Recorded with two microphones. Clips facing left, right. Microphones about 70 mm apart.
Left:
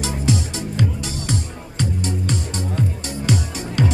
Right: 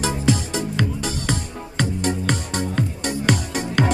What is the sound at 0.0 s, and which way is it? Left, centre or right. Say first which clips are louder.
Music: right 1 dB; right.